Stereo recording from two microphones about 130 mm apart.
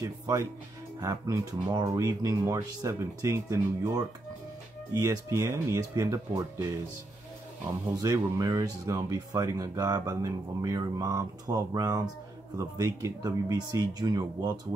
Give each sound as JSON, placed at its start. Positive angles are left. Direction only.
{"t": 1.0, "sound": "speech", "side_deg": -20}
{"t": 8.0, "sound": "speech", "side_deg": -30}